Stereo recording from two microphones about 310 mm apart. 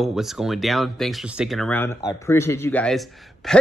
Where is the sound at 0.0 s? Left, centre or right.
Centre.